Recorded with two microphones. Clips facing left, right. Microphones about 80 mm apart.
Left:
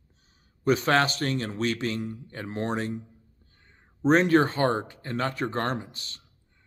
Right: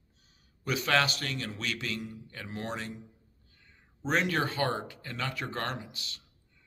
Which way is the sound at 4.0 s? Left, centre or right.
Left.